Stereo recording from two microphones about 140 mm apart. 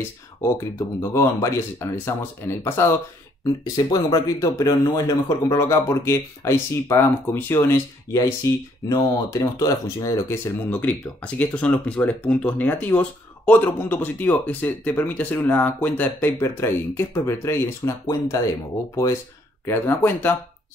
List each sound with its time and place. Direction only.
0.4 s speech: 20° left (ahead or behind)
19.6 s speech: 15° left (ahead or behind)